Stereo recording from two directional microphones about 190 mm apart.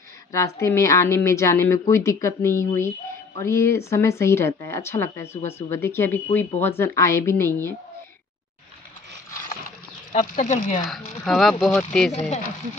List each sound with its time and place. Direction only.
0.3 s speech: 15° left (ahead or behind)
10.1 s speech: 40° left (ahead or behind)
11.2 s speech: centre (ahead or behind)
12.1 s speech: 35° left (ahead or behind)